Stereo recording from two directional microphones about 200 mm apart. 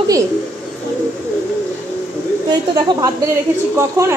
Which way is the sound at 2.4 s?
20° right (ahead or behind).